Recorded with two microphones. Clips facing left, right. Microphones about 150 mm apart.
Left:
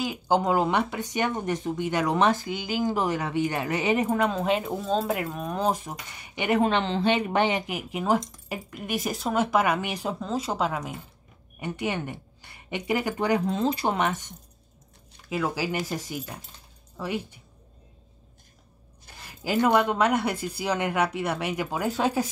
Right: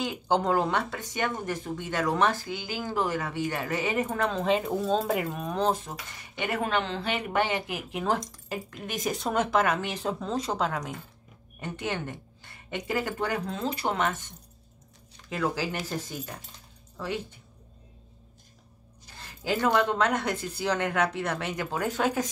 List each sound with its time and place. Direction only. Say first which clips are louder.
0.0 s speech: left 2 dB; 5° left (ahead or behind)
19.1 s speech: left 4 dB; 10° left (ahead or behind)